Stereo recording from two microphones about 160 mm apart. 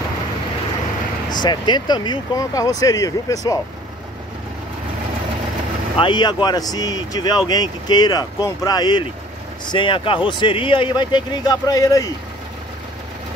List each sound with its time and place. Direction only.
1.4 s speech: 30° left (ahead or behind)
5.9 s speech: 30° left (ahead or behind)